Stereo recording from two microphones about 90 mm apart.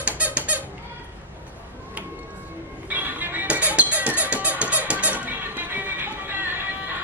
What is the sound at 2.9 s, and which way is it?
Music, 20° right (ahead or behind).